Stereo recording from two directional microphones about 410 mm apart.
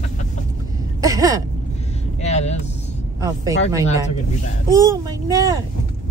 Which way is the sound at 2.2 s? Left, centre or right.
Centre.